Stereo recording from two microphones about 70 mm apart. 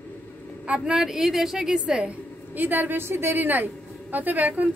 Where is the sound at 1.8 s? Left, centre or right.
Centre.